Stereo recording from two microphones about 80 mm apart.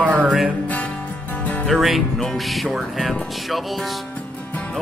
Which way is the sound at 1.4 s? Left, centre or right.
Centre.